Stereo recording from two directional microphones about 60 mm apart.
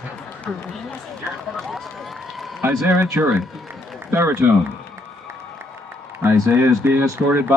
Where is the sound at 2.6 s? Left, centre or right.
Right.